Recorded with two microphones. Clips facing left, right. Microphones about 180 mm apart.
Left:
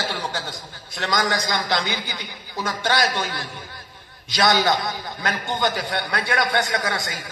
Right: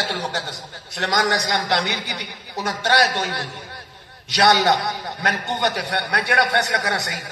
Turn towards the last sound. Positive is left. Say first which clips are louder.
# right 1 dB
turn(degrees=-70)  # may be behind; listen again after turning